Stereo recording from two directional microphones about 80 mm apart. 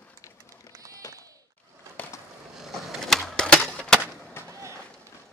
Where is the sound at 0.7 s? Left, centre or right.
Right.